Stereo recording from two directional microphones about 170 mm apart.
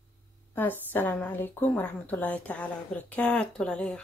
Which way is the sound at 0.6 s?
10° left (ahead or behind).